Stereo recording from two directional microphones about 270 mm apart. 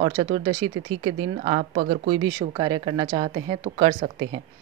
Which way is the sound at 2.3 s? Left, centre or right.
Centre.